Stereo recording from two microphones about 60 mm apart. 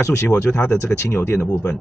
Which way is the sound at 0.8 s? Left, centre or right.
Left.